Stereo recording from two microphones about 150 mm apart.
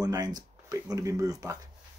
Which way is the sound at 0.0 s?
25° right (ahead or behind).